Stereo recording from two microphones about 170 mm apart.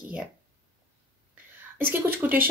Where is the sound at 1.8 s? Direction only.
10° right (ahead or behind).